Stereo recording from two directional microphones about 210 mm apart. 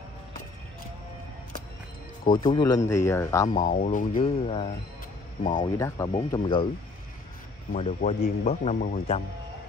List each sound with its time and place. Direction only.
2.3 s speech: 20° left (ahead or behind)
3.4 s speech: 40° left (ahead or behind)
5.5 s speech: 15° left (ahead or behind)
7.7 s speech: 35° left (ahead or behind)